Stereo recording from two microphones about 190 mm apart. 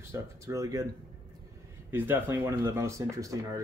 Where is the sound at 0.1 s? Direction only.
15° right (ahead or behind).